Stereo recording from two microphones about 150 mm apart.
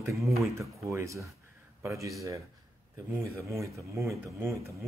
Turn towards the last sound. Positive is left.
turn(degrees=-20)  # may be behind; listen again after turning